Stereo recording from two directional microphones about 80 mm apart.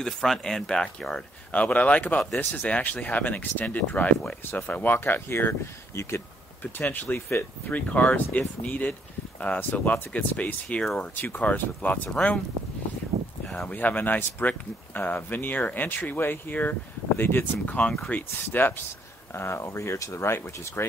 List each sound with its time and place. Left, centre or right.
0.0 s speech: centre
1.5 s speech: centre
6.6 s speech: left
13.5 s speech: centre
13.7 s speech: left